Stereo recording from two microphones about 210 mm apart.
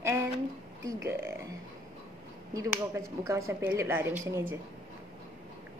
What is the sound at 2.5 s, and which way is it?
Speech, 15° right (ahead or behind).